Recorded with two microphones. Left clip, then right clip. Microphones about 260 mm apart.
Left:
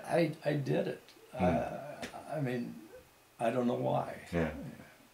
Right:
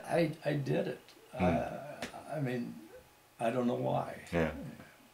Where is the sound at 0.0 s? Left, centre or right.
Centre.